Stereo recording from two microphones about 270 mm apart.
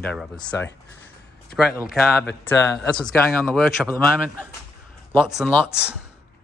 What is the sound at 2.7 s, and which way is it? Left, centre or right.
Speech, centre.